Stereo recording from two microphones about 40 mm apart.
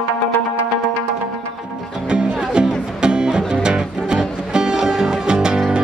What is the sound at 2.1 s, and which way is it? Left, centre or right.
Music, right.